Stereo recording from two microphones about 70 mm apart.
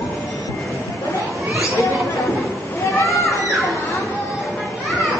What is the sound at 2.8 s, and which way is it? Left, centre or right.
Children playing, left.